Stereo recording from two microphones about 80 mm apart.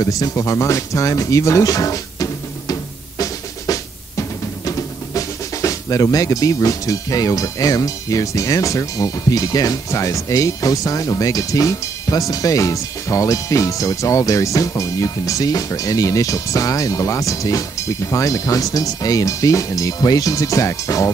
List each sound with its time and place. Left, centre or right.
0.0 s speech: left